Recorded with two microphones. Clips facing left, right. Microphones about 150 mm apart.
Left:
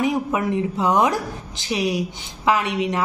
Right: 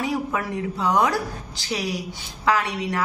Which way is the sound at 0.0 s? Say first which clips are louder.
Left 4 dB; 20° left (ahead or behind).